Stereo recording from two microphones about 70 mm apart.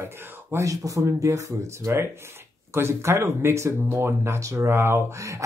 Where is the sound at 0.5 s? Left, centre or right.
Right.